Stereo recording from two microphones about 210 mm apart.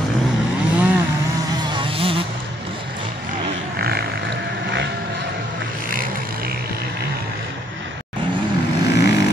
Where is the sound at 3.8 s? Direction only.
50° right (ahead or behind).